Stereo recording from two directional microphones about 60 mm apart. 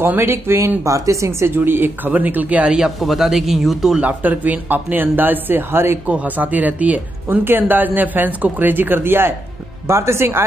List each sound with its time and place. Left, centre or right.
0.0 s speech: right
0.8 s a woman's voice: right
1.5 s speech: right
2.7 s speech: centre
4.0 s speech: right
6.0 s speech: right